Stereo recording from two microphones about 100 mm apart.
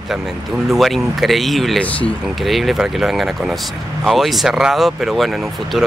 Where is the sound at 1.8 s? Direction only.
15° left (ahead or behind).